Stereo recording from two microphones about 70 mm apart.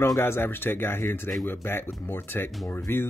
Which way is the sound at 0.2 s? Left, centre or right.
Left.